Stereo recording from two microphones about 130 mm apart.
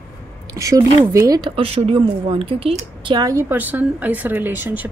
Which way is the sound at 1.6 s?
50° right (ahead or behind).